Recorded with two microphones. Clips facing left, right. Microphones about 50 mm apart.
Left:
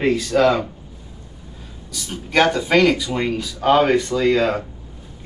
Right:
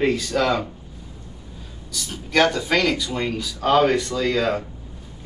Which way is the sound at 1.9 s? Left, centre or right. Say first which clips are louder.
Left 2 dB; centre.